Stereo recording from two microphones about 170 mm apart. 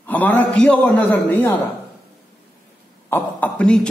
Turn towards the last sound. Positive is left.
turn(degrees=5)  # may be behind; listen again after turning